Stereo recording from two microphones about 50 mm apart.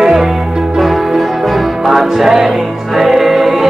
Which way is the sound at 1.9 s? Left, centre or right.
Centre.